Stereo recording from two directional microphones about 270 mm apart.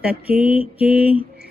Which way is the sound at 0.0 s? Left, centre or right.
Centre.